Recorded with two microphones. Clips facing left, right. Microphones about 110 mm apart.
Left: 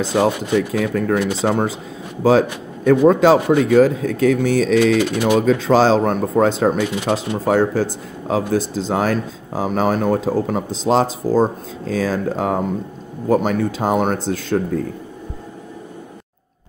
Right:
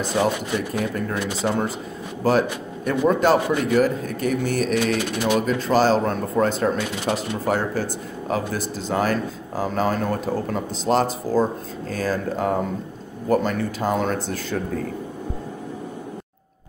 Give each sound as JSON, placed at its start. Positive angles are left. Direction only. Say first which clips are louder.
{"t": 0.0, "sound": "speech", "louder": "left 4 dB", "side_deg": 75}
{"t": 2.2, "sound": "speech", "louder": "left 5 dB", "side_deg": 85}
{"t": 4.9, "sound": "speech", "louder": "left 6 dB", "side_deg": 60}
{"t": 10.9, "sound": "speech", "louder": "left 4 dB", "side_deg": 90}
{"t": 12.4, "sound": "speech", "louder": "left 3 dB", "side_deg": 70}